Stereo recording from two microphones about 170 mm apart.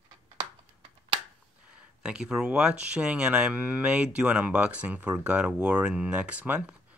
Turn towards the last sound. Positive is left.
turn(degrees=-10)  # may be behind; listen again after turning